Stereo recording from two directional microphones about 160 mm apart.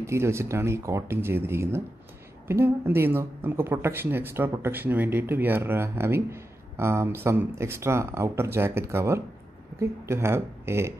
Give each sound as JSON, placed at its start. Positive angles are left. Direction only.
{"t": 0.0, "sound": "speech", "side_deg": -15}